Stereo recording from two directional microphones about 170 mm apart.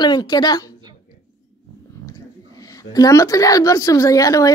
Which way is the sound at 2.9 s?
20° left (ahead or behind).